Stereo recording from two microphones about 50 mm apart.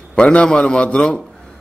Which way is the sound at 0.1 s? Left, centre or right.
Left.